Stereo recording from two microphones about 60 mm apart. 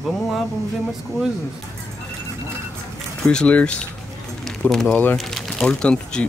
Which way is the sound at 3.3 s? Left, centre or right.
Left.